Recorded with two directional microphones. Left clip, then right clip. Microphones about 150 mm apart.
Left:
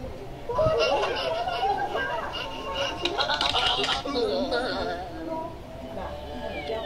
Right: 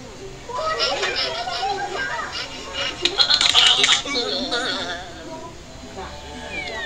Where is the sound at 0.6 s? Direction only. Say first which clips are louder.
Right 1 dB; 20° left (ahead or behind).